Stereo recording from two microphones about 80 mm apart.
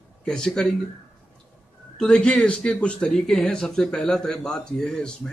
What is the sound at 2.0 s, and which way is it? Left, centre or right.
Speech, centre.